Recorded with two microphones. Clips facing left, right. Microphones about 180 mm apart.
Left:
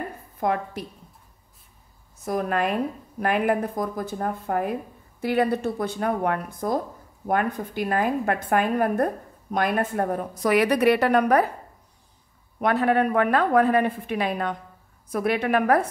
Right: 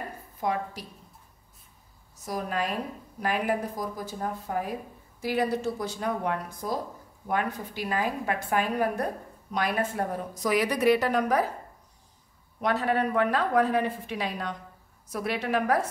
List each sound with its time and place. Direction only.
0.4 s a woman's voice: 55° left (ahead or behind)
2.1 s a woman's voice: 55° left (ahead or behind)
12.5 s a woman's voice: 60° left (ahead or behind)